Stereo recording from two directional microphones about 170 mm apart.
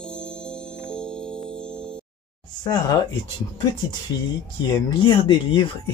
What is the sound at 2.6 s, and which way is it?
Speech, 25° left (ahead or behind).